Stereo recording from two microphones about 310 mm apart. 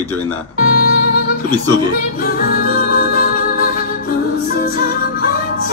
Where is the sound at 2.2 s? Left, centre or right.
Left.